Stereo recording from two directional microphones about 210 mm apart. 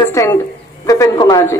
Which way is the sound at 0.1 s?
15° left (ahead or behind).